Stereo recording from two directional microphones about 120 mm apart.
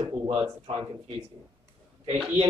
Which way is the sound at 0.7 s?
55° right (ahead or behind).